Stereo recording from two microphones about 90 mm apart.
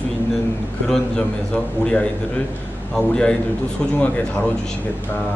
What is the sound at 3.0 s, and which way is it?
Speech, 10° left (ahead or behind).